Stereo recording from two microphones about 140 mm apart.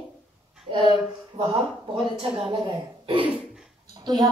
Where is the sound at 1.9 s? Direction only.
5° right (ahead or behind).